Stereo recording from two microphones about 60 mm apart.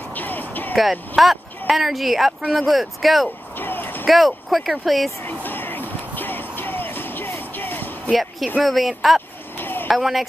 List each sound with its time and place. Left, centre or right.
0.1 s music: left
0.7 s speech: centre
3.5 s a sound: left
4.0 s speech: centre
5.2 s music: left
8.1 s speech: centre
9.6 s a sound: left
9.8 s speech: centre